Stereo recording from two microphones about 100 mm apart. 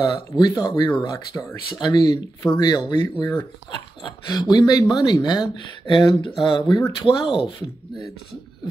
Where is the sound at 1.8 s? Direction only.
45° left (ahead or behind).